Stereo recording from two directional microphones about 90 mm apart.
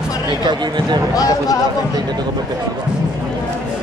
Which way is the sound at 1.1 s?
45° left (ahead or behind).